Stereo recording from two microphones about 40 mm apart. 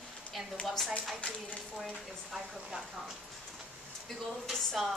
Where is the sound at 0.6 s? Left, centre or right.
Left.